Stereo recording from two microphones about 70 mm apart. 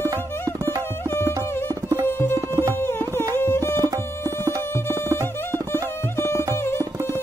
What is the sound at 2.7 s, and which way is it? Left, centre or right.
Tabla, left.